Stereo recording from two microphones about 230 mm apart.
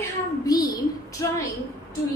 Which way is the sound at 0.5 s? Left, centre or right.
Centre.